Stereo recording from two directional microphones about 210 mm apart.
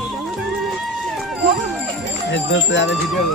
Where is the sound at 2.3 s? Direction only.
60° left (ahead or behind).